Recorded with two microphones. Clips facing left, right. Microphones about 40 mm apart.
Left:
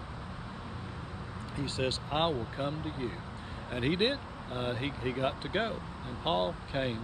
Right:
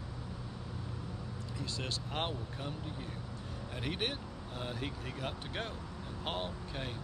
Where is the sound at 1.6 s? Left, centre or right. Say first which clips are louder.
Left 8 dB; left.